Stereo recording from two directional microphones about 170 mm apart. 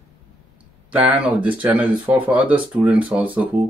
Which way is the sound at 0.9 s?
5° right (ahead or behind).